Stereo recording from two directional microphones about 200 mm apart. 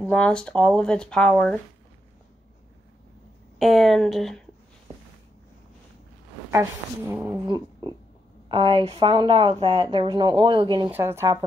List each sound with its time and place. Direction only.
0.1 s speech: 5° left (ahead or behind)
3.5 s speech: centre (ahead or behind)
6.5 s speech: 10° right (ahead or behind)
7.4 s a sound: 20° right (ahead or behind)
8.5 s speech: 25° right (ahead or behind)
10.9 s speech: 10° right (ahead or behind)